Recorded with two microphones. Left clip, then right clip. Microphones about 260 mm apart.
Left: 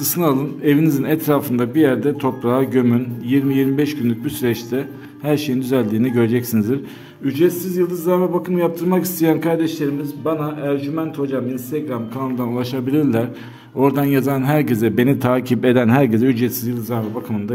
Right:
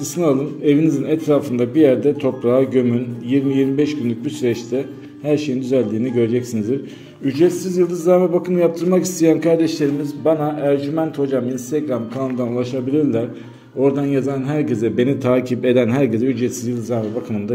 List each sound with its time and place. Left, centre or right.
0.0 s a man's voice: left
7.2 s a man's voice: centre
12.4 s a man's voice: left